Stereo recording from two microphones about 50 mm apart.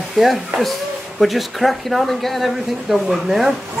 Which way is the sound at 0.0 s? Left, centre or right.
Centre.